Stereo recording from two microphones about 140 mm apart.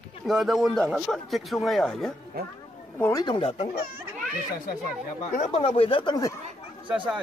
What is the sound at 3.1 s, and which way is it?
Speech, 35° left (ahead or behind).